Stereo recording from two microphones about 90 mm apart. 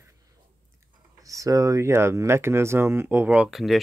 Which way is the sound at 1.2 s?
40° right (ahead or behind).